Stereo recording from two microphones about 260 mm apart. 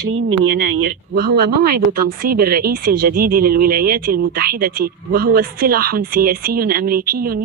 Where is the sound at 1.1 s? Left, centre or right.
Right.